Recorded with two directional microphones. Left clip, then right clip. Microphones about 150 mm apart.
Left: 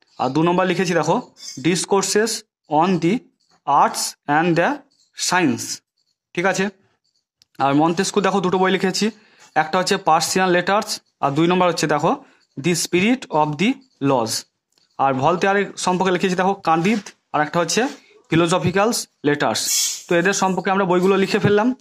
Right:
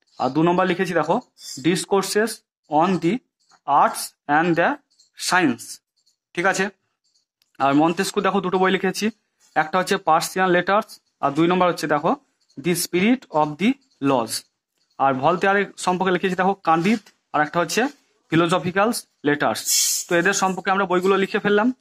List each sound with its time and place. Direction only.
0.2 s a woman's voice: 35° left (ahead or behind)